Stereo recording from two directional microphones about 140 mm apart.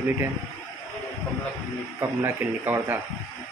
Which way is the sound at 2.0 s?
15° right (ahead or behind).